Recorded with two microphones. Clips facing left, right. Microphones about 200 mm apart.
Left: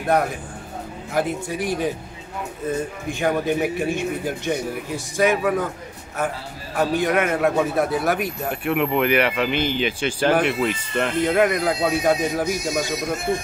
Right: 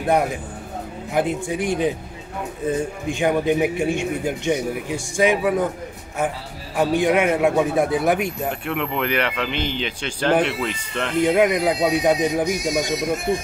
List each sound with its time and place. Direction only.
1.1 s speech: 15° right (ahead or behind)
3.1 s speech: 15° right (ahead or behind)
6.8 s speech: 15° right (ahead or behind)
8.6 s speech: 10° left (ahead or behind)
11.1 s speech: 15° right (ahead or behind)